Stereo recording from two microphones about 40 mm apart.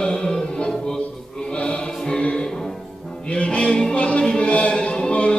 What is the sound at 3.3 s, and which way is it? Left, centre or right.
Music, left.